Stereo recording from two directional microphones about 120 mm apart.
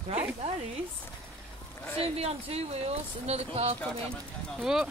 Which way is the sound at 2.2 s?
55° right (ahead or behind).